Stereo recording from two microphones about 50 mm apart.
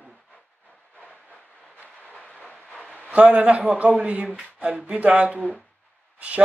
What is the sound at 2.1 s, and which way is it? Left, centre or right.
Train, centre.